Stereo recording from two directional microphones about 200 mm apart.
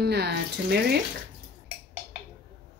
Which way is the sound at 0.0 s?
55° right (ahead or behind).